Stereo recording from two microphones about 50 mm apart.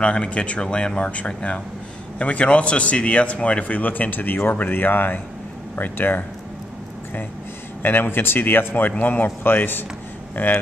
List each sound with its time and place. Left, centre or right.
0.0 s a man's voice: left
7.8 s a man's voice: left